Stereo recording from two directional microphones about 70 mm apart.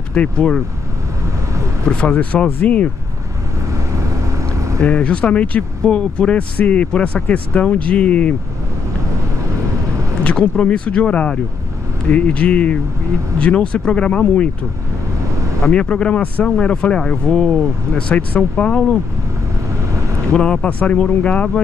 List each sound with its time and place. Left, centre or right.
0.1 s speech: centre
1.2 s vehicle: right
1.9 s speech: centre
3.7 s vehicle: right
4.8 s speech: centre
10.5 s speech: centre
19.8 s vehicle: right
20.3 s speech: centre